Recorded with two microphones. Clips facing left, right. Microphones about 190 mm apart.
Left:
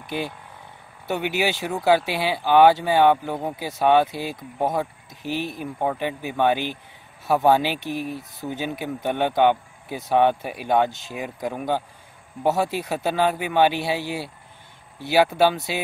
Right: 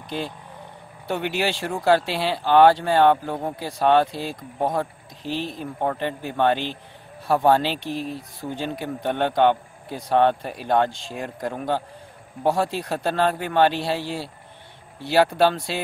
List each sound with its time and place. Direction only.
1.0 s speech: 5° left (ahead or behind)